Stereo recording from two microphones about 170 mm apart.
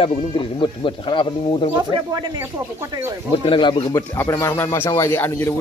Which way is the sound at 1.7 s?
25° right (ahead or behind).